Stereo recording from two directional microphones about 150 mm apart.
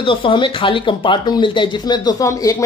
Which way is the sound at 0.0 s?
35° left (ahead or behind).